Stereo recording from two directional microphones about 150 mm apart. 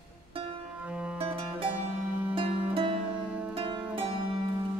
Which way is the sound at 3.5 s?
35° right (ahead or behind).